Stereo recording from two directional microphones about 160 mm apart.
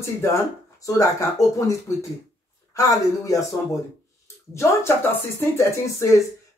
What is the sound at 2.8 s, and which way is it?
Speech, 20° left (ahead or behind).